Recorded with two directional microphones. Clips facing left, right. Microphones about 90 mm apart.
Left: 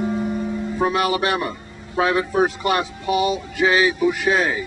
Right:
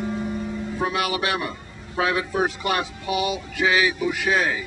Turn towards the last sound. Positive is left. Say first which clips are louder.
# left 4 dB
turn(degrees=30)  # may be behind; listen again after turning